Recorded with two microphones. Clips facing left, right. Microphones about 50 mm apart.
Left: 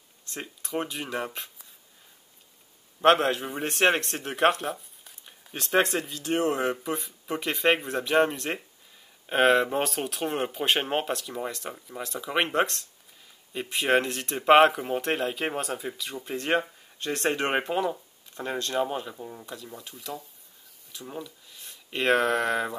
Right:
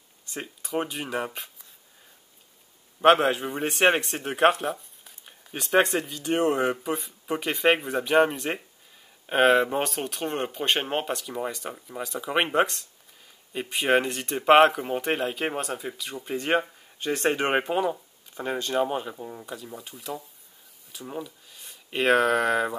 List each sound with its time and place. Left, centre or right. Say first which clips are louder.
0.2 s speech: right 2 dB; centre
3.0 s speech: right 2 dB; centre